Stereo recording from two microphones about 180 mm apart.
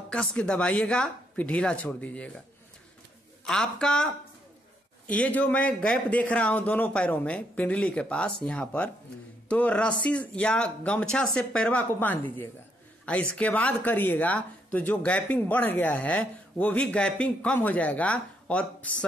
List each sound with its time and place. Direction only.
0.1 s speech: 5° left (ahead or behind)
3.4 s speech: 5° left (ahead or behind)